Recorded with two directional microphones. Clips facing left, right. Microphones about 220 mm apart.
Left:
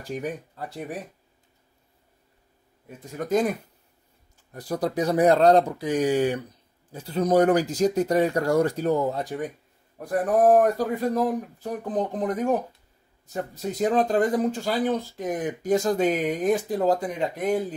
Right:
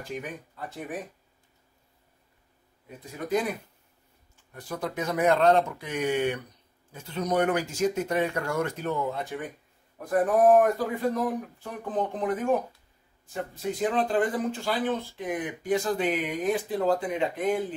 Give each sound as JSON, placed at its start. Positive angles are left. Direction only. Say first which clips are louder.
{"t": 0.1, "sound": "speech", "louder": "left 7 dB", "side_deg": 35}
{"t": 3.0, "sound": "speech", "louder": "left 4 dB", "side_deg": 45}